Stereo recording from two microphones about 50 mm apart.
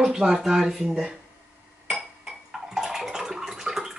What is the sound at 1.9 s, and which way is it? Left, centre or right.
Dishes, centre.